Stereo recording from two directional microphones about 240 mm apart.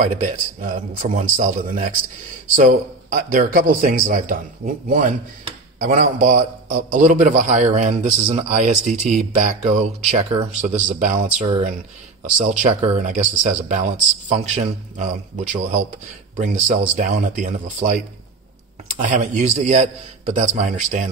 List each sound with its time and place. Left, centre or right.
0.0 s a man's voice: right